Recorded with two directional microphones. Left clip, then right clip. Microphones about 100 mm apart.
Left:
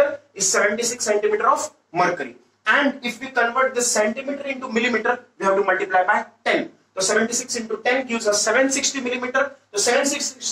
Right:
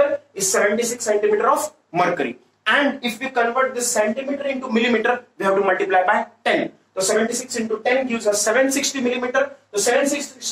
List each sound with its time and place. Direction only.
0.0 s speech: 45° right (ahead or behind)